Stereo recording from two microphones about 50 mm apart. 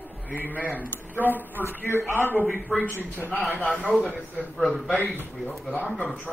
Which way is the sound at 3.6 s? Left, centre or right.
Left.